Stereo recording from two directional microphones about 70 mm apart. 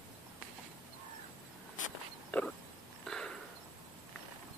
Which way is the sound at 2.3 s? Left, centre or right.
Left.